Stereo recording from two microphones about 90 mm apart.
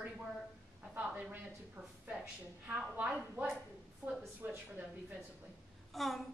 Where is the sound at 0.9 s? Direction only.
20° right (ahead or behind).